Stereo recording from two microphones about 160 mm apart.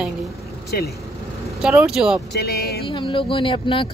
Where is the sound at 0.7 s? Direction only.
75° left (ahead or behind).